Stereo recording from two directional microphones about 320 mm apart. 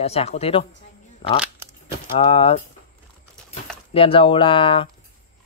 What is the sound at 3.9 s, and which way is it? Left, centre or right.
Speech, centre.